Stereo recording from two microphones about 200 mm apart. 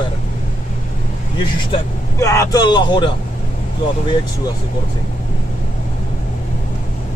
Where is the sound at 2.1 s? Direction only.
15° left (ahead or behind).